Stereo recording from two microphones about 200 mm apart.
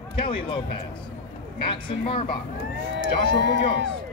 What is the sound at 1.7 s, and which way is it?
Speech, 25° left (ahead or behind).